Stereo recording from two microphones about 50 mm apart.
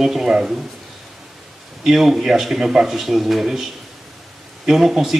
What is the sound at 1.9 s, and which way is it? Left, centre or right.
Speech, centre.